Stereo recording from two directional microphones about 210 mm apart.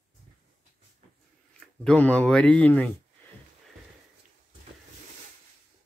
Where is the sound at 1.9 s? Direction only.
5° left (ahead or behind).